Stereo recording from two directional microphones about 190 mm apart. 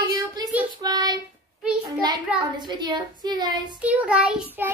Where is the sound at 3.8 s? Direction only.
5° right (ahead or behind).